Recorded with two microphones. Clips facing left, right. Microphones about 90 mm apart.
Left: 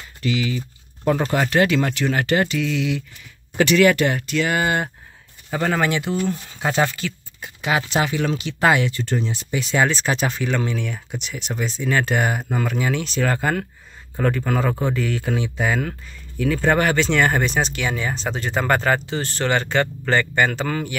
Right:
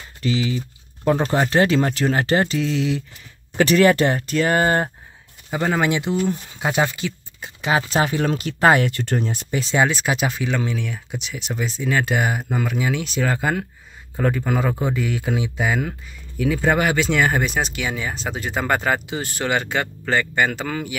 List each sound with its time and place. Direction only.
0.3 s speech: 30° right (ahead or behind)
5.5 s speech: 15° right (ahead or behind)
7.7 s speech: 40° right (ahead or behind)
9.8 s speech: 10° right (ahead or behind)